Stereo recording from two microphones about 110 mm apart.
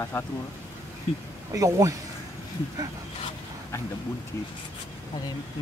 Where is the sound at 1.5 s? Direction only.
30° right (ahead or behind).